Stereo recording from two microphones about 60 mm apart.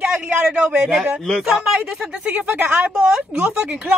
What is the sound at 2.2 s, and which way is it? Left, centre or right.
Speech, right.